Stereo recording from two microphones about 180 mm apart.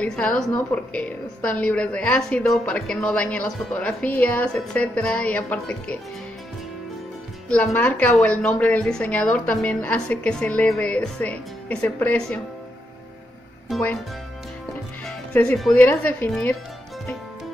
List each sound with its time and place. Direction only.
0.0 s a woman's voice: 5° left (ahead or behind)
7.4 s a woman's voice: 5° left (ahead or behind)
13.7 s speech: 5° left (ahead or behind)
15.0 s a woman's voice: 5° left (ahead or behind)